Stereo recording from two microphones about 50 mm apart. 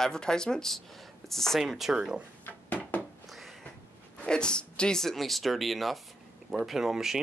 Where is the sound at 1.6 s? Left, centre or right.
Centre.